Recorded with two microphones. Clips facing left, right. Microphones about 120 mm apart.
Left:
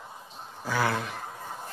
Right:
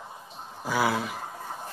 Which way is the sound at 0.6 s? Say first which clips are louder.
Right 2 dB; 10° right (ahead or behind).